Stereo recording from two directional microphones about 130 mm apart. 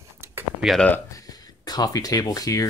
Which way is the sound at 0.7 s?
10° left (ahead or behind).